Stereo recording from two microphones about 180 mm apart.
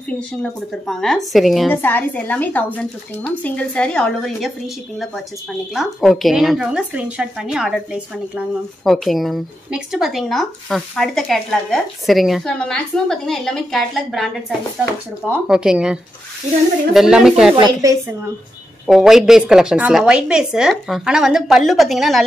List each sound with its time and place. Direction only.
0.4 s a woman's voice: centre (ahead or behind)
1.7 s a woman's voice: 10° left (ahead or behind)
17.6 s a woman's voice: 25° right (ahead or behind)
18.9 s a woman's voice: centre (ahead or behind)